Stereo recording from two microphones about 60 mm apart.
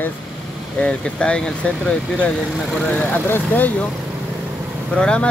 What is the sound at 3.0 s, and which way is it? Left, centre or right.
Speech, left.